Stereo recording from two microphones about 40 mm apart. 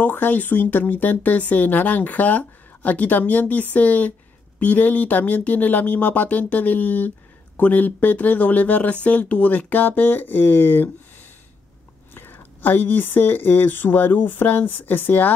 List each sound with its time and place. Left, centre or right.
0.0 s speech: left
12.1 s speech: left